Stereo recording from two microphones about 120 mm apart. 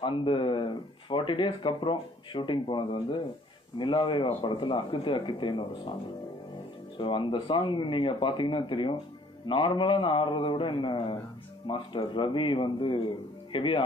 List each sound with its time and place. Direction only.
0.0 s speech: 45° left (ahead or behind)
7.0 s speech: 45° left (ahead or behind)